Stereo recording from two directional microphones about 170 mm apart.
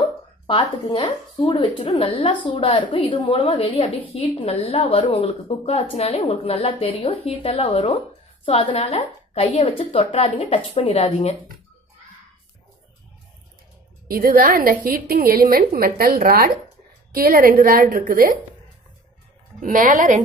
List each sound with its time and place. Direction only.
0.5 s a woman's voice: 30° left (ahead or behind)
14.0 s a woman's voice: 55° right (ahead or behind)
19.6 s a woman's voice: 50° right (ahead or behind)